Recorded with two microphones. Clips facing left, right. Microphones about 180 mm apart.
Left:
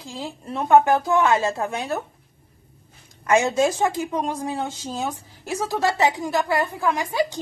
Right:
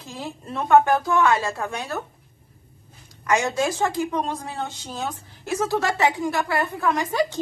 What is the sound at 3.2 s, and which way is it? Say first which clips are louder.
A woman's voice: left 3 dB; 20° left (ahead or behind).